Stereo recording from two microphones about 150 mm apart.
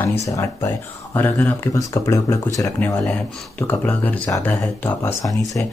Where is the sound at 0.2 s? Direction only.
20° left (ahead or behind).